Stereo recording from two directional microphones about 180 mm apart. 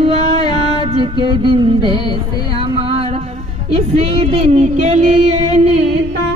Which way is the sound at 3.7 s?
35° right (ahead or behind).